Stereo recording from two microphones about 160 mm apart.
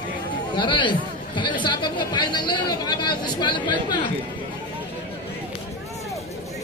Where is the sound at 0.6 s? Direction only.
30° left (ahead or behind).